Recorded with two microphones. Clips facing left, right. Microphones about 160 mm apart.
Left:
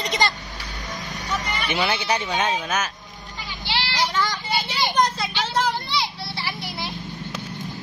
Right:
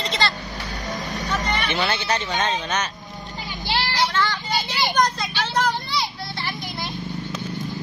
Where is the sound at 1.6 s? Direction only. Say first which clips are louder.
Even; 10° left (ahead or behind).